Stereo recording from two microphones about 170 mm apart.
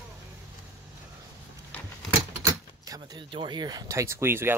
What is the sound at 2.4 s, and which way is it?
Door, 20° right (ahead or behind).